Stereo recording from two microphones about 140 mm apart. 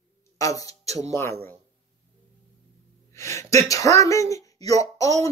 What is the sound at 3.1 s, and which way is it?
A woman's voice, 20° left (ahead or behind).